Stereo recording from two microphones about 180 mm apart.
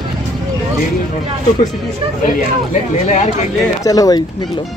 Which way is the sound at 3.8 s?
20° left (ahead or behind).